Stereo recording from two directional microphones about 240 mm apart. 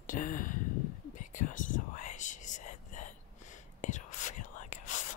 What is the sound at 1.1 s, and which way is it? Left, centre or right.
Whispering, left.